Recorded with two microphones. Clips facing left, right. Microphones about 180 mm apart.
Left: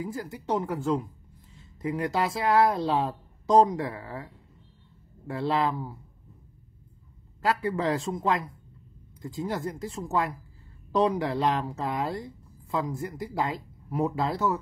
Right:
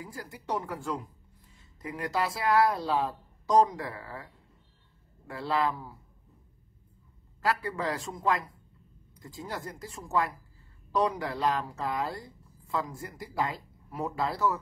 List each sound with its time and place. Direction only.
0.0 s speech: 25° left (ahead or behind)
1.5 s a sound: 25° left (ahead or behind)
2.1 s speech: 25° left (ahead or behind)
7.4 s speech: 25° left (ahead or behind)